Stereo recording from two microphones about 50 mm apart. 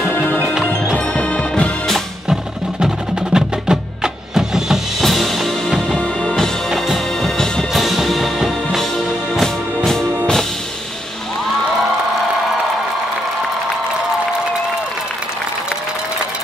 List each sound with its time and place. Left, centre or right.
0.1 s music: left
0.9 s music: left
3.3 s music: centre
5.0 s music: centre
6.7 s bagpipes: centre
7.7 s music: centre